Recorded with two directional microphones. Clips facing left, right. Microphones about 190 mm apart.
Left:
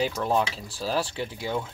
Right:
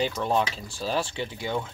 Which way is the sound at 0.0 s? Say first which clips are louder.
Even; 5° left (ahead or behind).